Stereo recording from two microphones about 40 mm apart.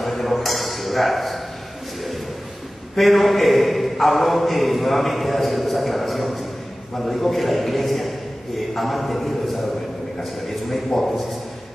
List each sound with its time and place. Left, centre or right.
0.0 s a sound: centre
3.0 s a man's voice: centre
10.9 s a man's voice: centre